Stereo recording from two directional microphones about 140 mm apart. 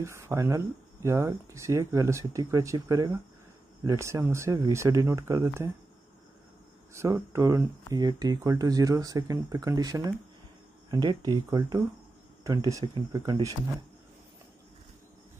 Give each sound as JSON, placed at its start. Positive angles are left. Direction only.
{"t": 0.0, "sound": "speech", "side_deg": -20}
{"t": 6.9, "sound": "speech", "side_deg": -20}